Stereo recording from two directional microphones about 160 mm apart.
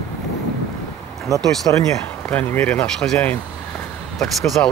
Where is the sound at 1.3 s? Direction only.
20° right (ahead or behind).